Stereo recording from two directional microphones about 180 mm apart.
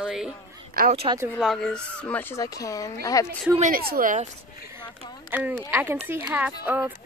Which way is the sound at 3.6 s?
50° right (ahead or behind).